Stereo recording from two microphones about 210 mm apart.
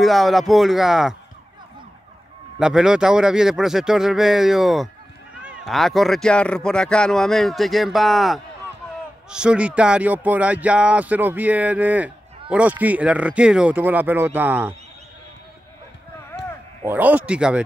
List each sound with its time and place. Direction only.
0.0 s speech: centre (ahead or behind)
2.6 s speech: 5° right (ahead or behind)
16.8 s speech: 10° right (ahead or behind)